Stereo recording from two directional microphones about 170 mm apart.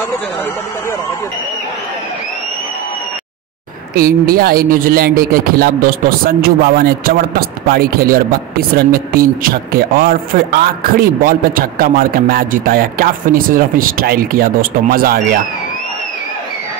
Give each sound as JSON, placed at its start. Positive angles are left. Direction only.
{"t": 3.9, "sound": "speech", "side_deg": -60}